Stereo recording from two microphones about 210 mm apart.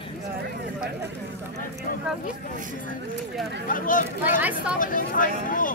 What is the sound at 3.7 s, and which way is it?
Speech, 40° left (ahead or behind).